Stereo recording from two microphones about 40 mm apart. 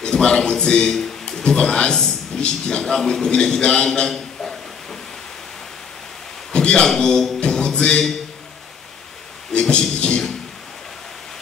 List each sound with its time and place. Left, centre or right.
0.0 s a man's voice: left
3.3 s a man's voice: left
4.1 s a sound: centre
6.5 s a sound: left
6.8 s a man's voice: centre
7.4 s music: left
9.5 s speech: left